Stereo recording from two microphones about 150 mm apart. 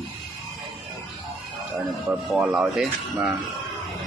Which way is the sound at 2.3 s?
5° right (ahead or behind).